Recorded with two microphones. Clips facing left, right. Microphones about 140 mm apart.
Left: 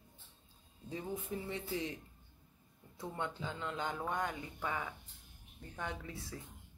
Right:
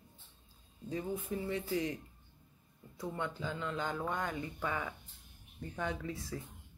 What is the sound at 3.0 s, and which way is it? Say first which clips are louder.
Speech: right 2 dB; 25° left (ahead or behind).